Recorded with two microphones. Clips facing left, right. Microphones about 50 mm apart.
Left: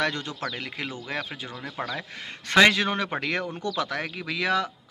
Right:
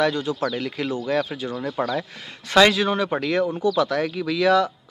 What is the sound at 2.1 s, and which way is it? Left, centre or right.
A man's voice, left.